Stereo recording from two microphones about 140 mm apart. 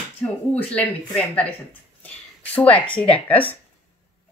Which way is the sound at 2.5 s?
10° left (ahead or behind).